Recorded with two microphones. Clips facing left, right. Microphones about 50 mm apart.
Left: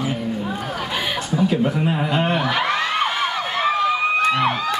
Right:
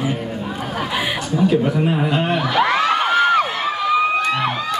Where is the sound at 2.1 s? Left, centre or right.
Centre.